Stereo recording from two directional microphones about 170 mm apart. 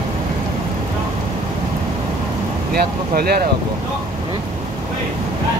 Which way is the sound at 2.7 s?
65° right (ahead or behind).